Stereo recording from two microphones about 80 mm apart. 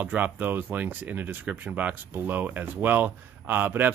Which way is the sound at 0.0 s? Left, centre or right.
Right.